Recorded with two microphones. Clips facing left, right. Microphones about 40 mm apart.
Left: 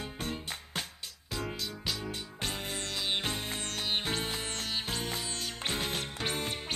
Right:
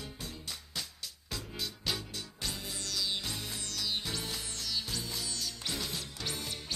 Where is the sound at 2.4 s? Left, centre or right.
Left.